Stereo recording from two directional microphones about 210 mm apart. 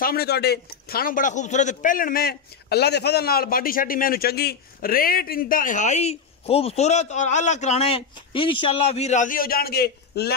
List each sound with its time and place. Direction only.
0.0 s a man's voice: 45° left (ahead or behind)